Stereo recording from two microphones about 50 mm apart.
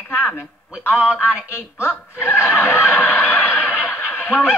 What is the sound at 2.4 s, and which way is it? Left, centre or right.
Speech, centre.